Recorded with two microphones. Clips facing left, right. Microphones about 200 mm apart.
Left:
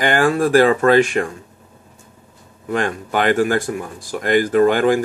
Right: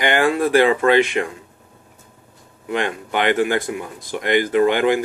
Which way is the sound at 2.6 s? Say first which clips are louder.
Left 2 dB; 40° left (ahead or behind).